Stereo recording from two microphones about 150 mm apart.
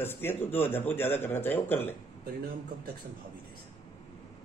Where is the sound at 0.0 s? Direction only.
15° left (ahead or behind).